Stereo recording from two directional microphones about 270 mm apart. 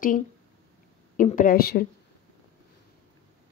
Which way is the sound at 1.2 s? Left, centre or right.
Left.